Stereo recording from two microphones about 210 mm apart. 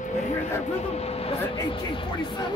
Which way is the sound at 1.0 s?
30° left (ahead or behind).